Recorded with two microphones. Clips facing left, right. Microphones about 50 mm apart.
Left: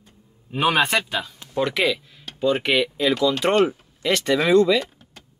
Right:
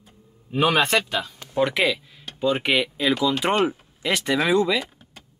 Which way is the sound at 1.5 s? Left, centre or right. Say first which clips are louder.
Even; centre.